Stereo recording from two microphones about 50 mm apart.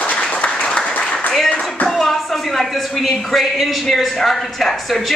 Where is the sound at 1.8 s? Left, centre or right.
Centre.